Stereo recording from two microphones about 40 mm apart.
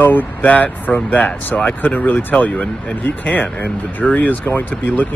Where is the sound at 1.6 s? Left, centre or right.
Left.